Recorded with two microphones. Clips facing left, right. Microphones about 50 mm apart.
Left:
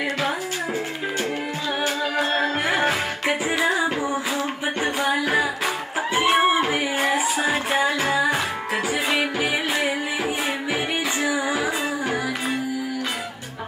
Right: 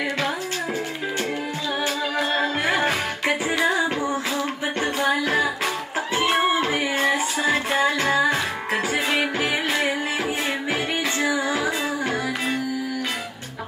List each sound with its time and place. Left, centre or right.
2.6 s music: centre
6.1 s a sound: centre
6.6 s music: centre